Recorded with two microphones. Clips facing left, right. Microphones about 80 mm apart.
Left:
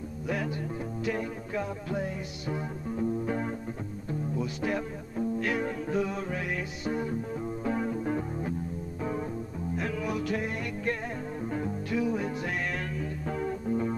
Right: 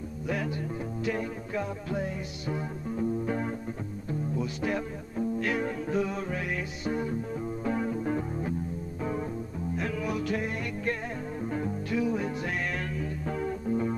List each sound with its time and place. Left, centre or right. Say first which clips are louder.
1.0 s music: even; centre
9.8 s music: even; centre